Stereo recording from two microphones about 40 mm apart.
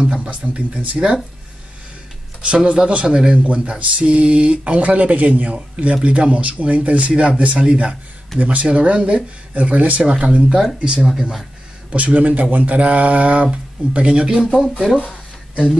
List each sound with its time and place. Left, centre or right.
0.0 s a man's voice: right
2.4 s a man's voice: right
10.1 s a man's voice: right
11.9 s a man's voice: right